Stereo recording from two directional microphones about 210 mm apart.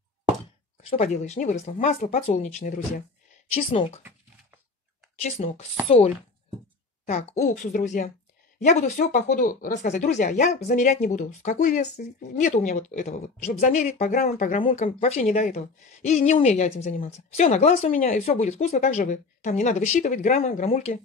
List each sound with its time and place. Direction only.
0.8 s speech: 30° left (ahead or behind)
5.2 s speech: 30° left (ahead or behind)
14.6 s speech: 25° left (ahead or behind)